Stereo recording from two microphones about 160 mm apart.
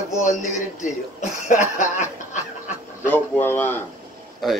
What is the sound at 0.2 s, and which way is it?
Speech, 50° left (ahead or behind).